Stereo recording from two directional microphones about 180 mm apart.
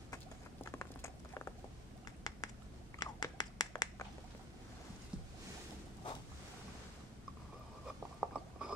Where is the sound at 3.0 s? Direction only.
20° left (ahead or behind).